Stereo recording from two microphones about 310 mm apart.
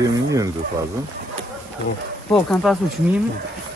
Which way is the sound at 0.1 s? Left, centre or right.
Centre.